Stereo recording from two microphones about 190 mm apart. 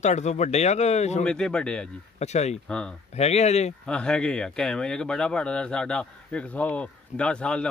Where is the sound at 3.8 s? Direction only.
5° left (ahead or behind).